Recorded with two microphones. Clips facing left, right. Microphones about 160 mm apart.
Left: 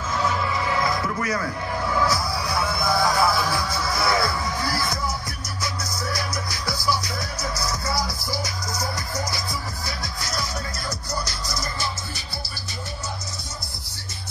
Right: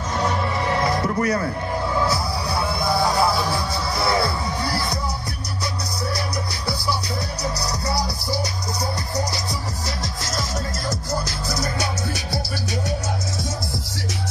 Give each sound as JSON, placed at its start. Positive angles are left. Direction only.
{"t": 0.2, "sound": "music", "side_deg": -55}
{"t": 0.7, "sound": "music", "side_deg": -35}